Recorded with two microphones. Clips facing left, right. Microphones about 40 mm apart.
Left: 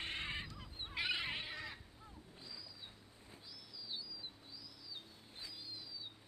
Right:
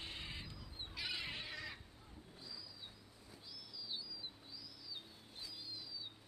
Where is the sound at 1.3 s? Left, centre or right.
Left.